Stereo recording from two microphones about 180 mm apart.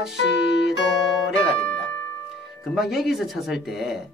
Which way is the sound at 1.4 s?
Centre (ahead or behind).